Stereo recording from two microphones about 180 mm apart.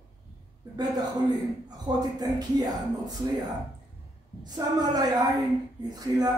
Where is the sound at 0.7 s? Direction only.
20° right (ahead or behind).